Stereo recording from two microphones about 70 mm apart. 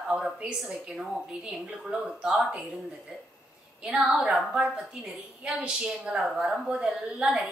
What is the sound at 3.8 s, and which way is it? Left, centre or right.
A woman's voice, centre.